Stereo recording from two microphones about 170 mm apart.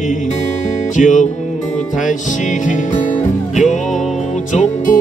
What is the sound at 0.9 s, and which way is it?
Music, 45° left (ahead or behind).